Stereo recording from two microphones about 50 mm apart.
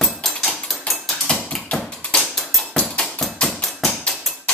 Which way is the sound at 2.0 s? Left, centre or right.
Left.